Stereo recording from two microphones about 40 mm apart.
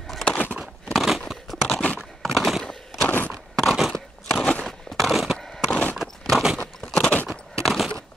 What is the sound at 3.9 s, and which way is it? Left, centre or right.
Crunch, centre.